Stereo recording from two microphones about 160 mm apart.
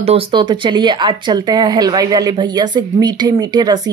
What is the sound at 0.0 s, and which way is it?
Speech, 35° right (ahead or behind).